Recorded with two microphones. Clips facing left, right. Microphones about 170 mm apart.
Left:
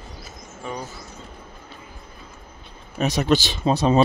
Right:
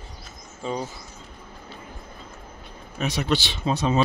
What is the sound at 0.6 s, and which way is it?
Speech, 20° right (ahead or behind).